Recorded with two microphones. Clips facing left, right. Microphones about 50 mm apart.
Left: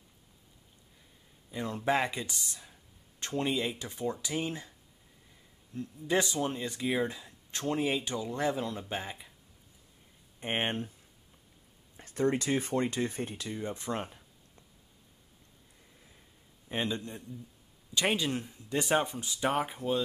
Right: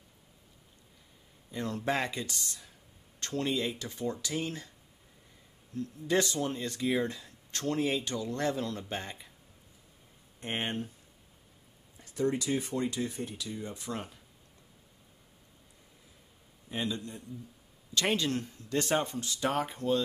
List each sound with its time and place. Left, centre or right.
1.5 s speech: centre
5.8 s speech: centre
10.4 s a man's voice: left
12.0 s speech: left
16.6 s a man's voice: left
17.9 s speech: centre